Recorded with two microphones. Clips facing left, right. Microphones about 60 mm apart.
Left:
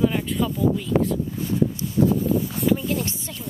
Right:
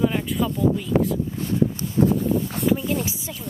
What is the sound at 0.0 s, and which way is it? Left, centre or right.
Speech, centre.